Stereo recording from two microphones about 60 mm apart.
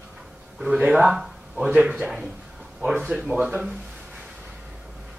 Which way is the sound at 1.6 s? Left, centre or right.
Centre.